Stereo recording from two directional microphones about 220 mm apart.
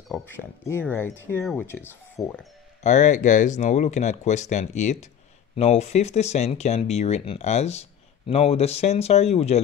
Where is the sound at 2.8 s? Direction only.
35° left (ahead or behind).